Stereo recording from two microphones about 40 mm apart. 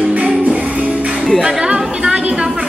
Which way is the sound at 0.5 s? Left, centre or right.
Right.